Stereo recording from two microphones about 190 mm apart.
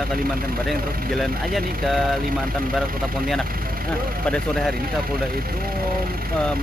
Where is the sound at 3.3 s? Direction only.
5° left (ahead or behind).